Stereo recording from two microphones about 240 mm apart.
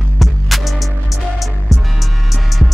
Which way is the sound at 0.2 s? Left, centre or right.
Centre.